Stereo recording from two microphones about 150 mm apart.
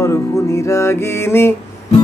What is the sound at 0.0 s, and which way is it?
Music, 20° left (ahead or behind).